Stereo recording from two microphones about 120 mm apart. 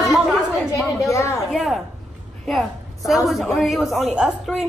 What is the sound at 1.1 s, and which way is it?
Speech, 25° left (ahead or behind).